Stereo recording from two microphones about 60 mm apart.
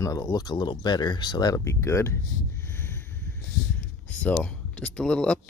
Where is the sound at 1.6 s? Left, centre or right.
Left.